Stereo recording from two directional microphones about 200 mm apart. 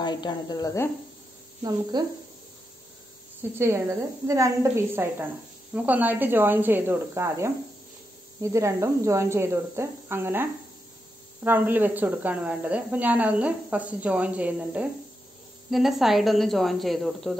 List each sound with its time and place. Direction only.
0.0 s speech: 20° left (ahead or behind)
1.6 s a woman's voice: 20° right (ahead or behind)
3.5 s speech: 15° right (ahead or behind)